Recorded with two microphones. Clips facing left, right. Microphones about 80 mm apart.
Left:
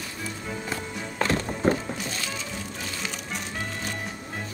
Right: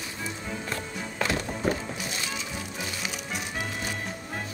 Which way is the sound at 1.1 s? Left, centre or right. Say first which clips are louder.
Left 3 dB; left.